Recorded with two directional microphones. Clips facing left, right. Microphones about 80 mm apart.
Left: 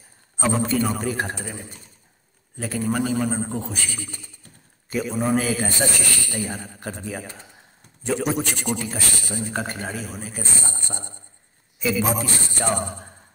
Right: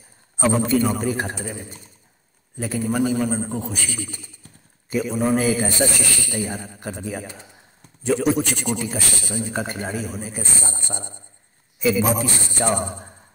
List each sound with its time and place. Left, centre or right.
0.4 s a man's voice: centre